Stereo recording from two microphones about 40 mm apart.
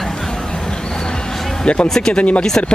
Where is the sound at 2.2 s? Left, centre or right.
Left.